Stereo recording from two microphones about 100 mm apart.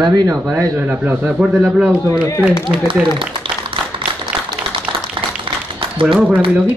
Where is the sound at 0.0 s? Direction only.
45° right (ahead or behind).